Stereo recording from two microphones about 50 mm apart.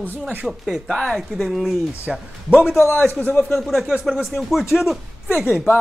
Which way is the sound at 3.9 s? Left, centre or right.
Centre.